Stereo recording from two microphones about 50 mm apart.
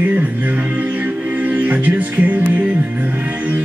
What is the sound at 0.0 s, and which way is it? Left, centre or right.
Music, right.